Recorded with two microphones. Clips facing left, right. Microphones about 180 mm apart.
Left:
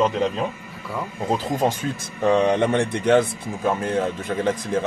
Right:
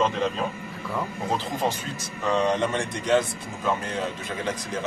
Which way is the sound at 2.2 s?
55° left (ahead or behind).